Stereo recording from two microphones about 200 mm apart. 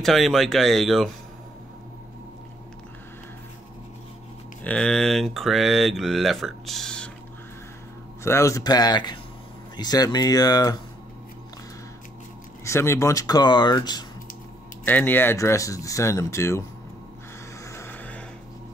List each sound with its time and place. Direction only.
0.0 s speech: centre (ahead or behind)
4.6 s speech: 5° left (ahead or behind)
8.2 s speech: 15° left (ahead or behind)
12.6 s speech: 15° left (ahead or behind)
14.9 s speech: 10° left (ahead or behind)
17.6 s music: 10° left (ahead or behind)